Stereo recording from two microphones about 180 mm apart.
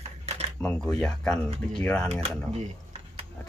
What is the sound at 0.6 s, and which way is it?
Speech, 5° left (ahead or behind).